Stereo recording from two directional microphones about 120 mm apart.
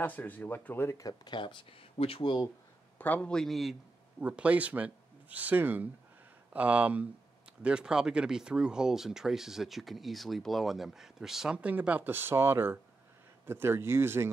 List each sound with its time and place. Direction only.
0.0 s speech: 15° left (ahead or behind); by 2.4 s 45° left (ahead or behind)
3.0 s speech: 10° left (ahead or behind)
4.2 s speech: 10° right (ahead or behind)